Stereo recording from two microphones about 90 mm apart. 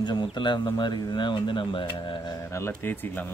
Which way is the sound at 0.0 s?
55° left (ahead or behind).